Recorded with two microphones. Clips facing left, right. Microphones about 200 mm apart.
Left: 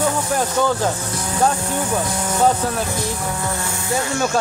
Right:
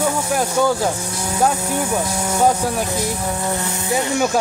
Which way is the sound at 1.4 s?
10° right (ahead or behind).